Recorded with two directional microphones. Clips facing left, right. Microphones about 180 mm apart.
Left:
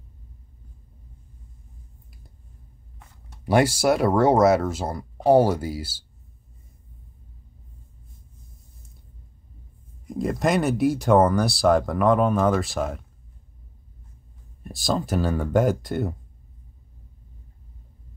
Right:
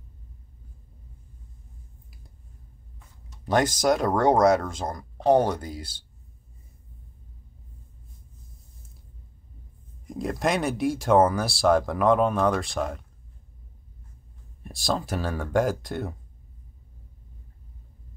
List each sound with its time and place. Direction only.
3.0 s a sound: 75° left (ahead or behind)
3.4 s speech: 10° left (ahead or behind)
10.0 s speech: centre (ahead or behind)
14.6 s speech: centre (ahead or behind)